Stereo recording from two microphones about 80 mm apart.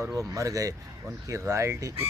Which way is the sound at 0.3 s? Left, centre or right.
Right.